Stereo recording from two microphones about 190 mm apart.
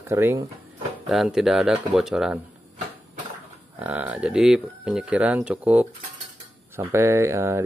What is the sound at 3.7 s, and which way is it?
Speech, 10° right (ahead or behind).